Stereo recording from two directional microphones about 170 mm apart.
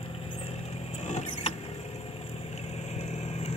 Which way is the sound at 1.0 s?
40° left (ahead or behind).